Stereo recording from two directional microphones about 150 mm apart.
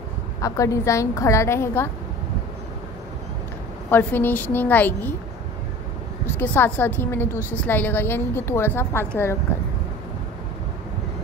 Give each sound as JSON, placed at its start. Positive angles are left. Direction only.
{"t": 0.4, "sound": "a woman's voice", "side_deg": 20}
{"t": 3.9, "sound": "a woman's voice", "side_deg": 15}
{"t": 6.2, "sound": "a woman's voice", "side_deg": 15}